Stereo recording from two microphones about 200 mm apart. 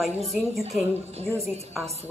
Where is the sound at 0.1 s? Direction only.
Centre (ahead or behind).